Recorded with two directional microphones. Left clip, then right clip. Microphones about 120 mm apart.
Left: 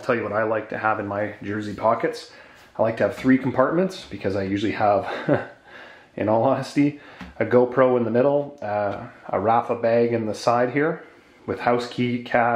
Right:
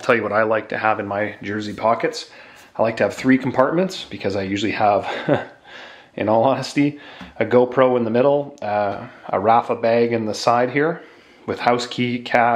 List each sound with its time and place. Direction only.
0.0 s speech: 30° right (ahead or behind)